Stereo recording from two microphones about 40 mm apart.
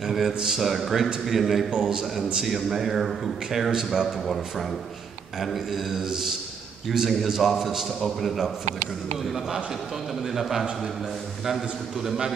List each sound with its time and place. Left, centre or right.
0.0 s a sound: centre
0.3 s a man's voice: centre
0.6 s speech: centre
1.7 s a man's voice: centre
2.4 s speech: centre
3.7 s a man's voice: centre
5.4 s a man's voice: centre
10.2 s a man's voice: centre